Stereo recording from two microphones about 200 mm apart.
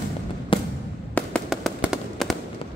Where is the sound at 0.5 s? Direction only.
25° left (ahead or behind).